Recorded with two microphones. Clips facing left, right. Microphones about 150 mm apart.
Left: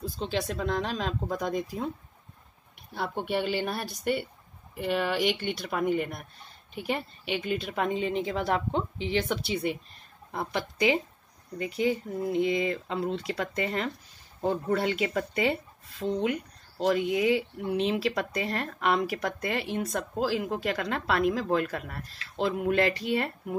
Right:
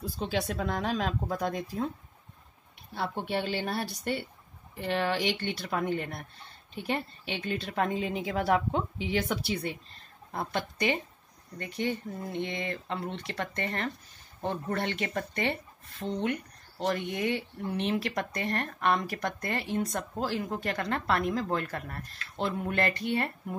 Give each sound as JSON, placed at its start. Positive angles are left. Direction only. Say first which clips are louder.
{"t": 0.0, "sound": "a woman's voice", "louder": "left 1 dB", "side_deg": -5}
{"t": 2.9, "sound": "a woman's voice", "louder": "left 2 dB", "side_deg": 5}
{"t": 22.8, "sound": "speech", "louder": "left 2 dB", "side_deg": 90}